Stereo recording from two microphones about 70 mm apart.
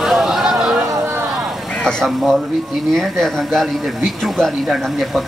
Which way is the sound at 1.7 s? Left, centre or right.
Centre.